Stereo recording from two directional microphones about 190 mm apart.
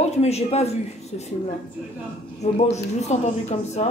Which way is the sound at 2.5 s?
35° left (ahead or behind).